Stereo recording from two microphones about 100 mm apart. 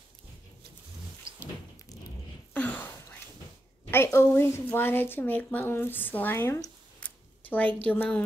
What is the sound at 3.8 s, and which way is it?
A woman's voice, 25° left (ahead or behind).